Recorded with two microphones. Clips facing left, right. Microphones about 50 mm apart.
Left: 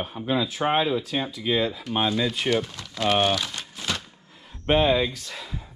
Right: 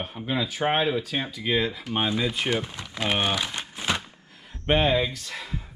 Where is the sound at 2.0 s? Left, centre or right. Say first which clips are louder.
Left 1 dB; right.